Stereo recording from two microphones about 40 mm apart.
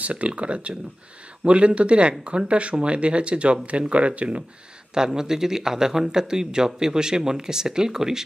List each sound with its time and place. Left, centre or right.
0.0 s speech: right
4.9 s speech: centre